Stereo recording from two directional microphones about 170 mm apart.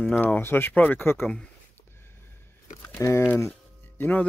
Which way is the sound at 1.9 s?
15° left (ahead or behind).